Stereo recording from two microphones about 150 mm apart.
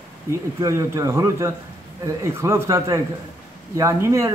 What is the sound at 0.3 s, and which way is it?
A man's voice, 20° right (ahead or behind).